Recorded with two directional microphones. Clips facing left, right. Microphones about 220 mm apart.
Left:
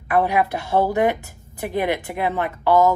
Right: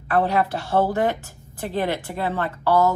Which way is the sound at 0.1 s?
15° left (ahead or behind).